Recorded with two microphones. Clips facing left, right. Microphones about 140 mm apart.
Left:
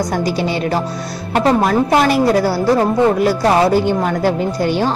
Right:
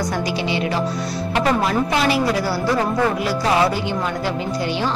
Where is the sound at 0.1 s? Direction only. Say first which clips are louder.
Left 4 dB; 45° left (ahead or behind).